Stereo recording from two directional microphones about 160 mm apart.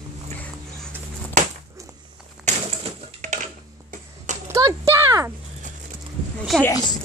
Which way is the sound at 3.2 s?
50° right (ahead or behind).